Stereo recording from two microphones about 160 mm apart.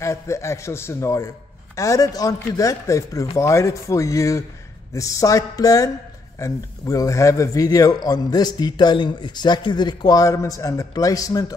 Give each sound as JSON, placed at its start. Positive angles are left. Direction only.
{"t": 0.0, "sound": "a man's voice", "side_deg": 20}